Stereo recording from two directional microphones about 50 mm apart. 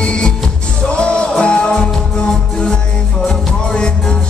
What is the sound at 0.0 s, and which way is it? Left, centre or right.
Music, centre.